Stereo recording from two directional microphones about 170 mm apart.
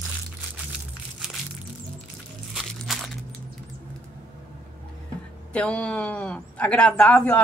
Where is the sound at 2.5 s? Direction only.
Centre (ahead or behind).